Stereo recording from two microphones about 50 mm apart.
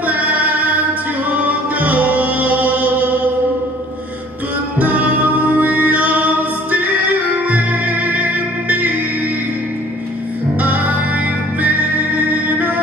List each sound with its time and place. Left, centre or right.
0.0 s music: right
4.7 s music: right
10.6 s music: right